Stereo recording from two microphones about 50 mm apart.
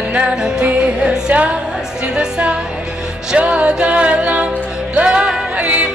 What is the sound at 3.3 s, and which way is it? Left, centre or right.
Music, right.